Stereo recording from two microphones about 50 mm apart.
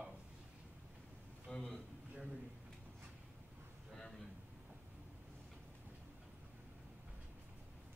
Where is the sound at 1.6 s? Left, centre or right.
Centre.